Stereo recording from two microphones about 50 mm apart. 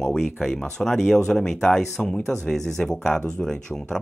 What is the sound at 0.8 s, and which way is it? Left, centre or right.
Speech, centre.